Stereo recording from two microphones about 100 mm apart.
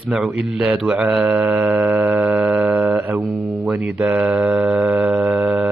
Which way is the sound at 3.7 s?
10° right (ahead or behind).